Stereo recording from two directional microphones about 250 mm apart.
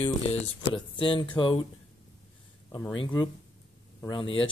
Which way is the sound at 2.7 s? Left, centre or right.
Centre.